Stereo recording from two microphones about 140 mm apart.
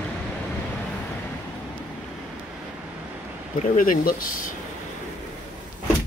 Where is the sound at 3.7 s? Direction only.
75° left (ahead or behind); by 4.4 s 90° left.